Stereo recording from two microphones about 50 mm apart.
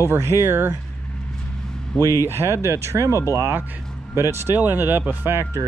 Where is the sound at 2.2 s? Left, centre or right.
Right.